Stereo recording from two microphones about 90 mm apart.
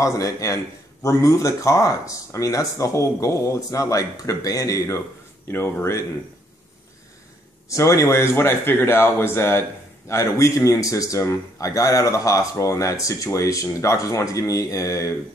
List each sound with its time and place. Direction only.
0.0 s speech: 35° left (ahead or behind)
7.6 s speech: 35° left (ahead or behind)